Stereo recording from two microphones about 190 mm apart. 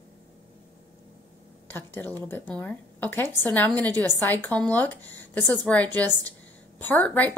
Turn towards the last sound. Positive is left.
turn(degrees=10)  # may be behind; listen again after turning